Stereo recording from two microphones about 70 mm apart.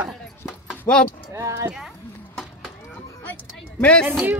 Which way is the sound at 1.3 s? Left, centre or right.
Right.